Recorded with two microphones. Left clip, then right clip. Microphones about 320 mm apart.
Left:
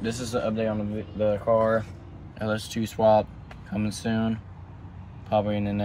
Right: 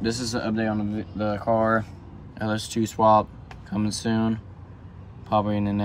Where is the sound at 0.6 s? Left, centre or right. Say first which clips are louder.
Right 1 dB; right.